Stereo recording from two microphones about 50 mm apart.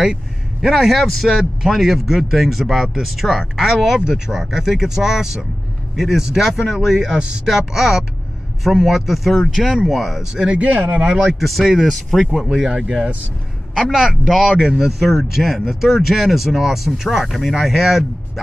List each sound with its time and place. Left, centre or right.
0.6 s speech: centre
10.3 s speech: centre
10.6 s speech: right
11.2 s speech: centre
12.7 s speech: centre
13.8 s speech: centre